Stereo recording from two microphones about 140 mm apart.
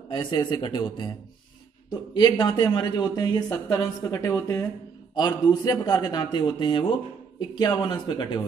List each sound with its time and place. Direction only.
0.1 s a man's voice: 35° left (ahead or behind)